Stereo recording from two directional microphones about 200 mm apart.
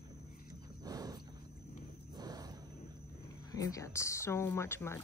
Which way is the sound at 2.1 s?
20° right (ahead or behind).